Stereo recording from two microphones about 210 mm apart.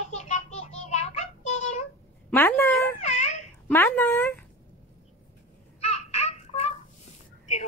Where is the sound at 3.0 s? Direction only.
35° left (ahead or behind).